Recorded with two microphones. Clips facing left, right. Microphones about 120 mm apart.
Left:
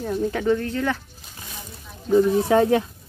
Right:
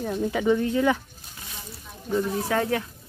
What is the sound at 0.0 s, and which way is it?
Speech, 5° right (ahead or behind).